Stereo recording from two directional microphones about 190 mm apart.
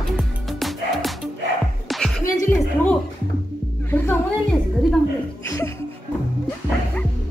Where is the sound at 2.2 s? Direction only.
10° left (ahead or behind).